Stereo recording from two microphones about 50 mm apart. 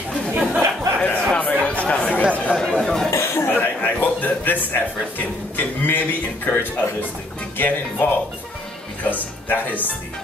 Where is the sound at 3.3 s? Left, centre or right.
Left.